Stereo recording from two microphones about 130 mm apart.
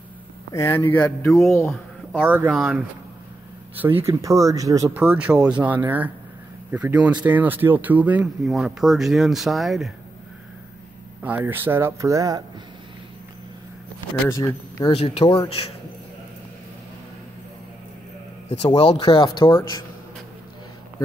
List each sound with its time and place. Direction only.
0.5 s speech: 25° left (ahead or behind)
1.5 s speech: 15° left (ahead or behind)
2.2 s speech: 10° right (ahead or behind)
4.0 s speech: 25° right (ahead or behind)
4.9 s speech: 10° right (ahead or behind)
11.2 s speech: 15° right (ahead or behind)
14.3 s speech: 25° left (ahead or behind)
14.9 s speech: 45° left (ahead or behind)
18.8 s speech: 50° left (ahead or behind)